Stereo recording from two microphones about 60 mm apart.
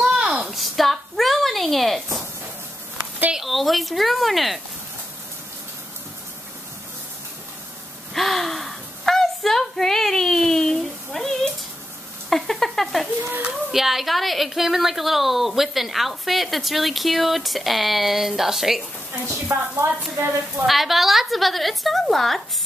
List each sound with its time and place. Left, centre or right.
0.0 s a sound: centre
0.5 s a sound: centre
3.3 s speech: centre
8.1 s gasp: centre
12.3 s a sound: centre
13.7 s a woman's voice: centre
19.3 s speech: right
20.2 s speech: right
20.6 s a woman's voice: centre